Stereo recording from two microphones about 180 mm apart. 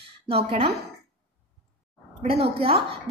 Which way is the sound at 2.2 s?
30° right (ahead or behind).